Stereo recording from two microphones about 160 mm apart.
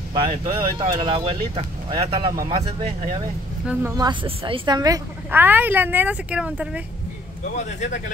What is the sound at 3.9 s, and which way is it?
A woman's voice, 25° right (ahead or behind).